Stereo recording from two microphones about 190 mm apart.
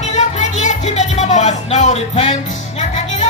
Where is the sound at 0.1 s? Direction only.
40° left (ahead or behind).